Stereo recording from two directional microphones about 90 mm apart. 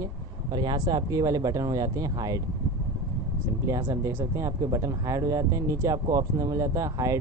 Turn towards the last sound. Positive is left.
turn(degrees=-35)  # may be behind; listen again after turning